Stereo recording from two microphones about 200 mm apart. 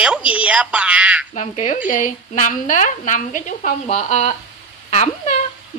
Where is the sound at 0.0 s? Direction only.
5° right (ahead or behind).